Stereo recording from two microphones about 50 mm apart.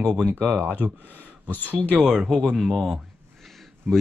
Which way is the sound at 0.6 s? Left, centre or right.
Right.